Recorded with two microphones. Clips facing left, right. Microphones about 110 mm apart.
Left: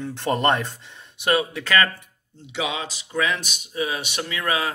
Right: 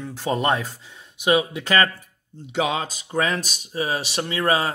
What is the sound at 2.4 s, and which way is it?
Speech, 45° right (ahead or behind).